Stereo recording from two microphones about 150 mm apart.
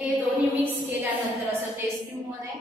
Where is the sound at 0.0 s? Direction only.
10° right (ahead or behind).